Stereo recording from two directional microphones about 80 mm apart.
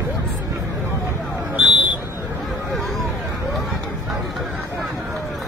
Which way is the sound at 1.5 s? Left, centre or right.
Centre.